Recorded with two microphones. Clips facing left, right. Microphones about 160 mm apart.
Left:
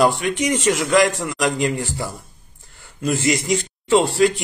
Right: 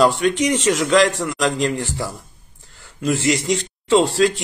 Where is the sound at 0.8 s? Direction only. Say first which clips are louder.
Right 2 dB; 90° right.